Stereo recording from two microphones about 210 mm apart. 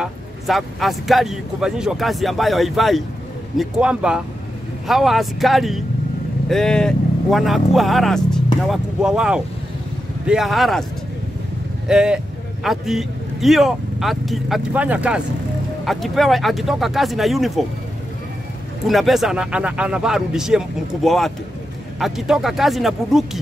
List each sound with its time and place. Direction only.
0.0 s speech: centre (ahead or behind)
11.9 s speech: 5° right (ahead or behind)
18.9 s speech: centre (ahead or behind)